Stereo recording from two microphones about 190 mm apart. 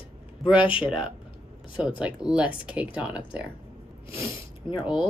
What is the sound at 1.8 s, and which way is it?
Speech, 5° right (ahead or behind).